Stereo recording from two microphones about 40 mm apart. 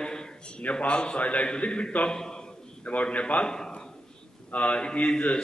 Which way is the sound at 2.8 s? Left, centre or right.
Left.